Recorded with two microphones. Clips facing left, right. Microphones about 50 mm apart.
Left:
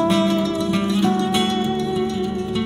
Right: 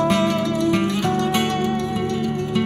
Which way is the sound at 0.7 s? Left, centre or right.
Right.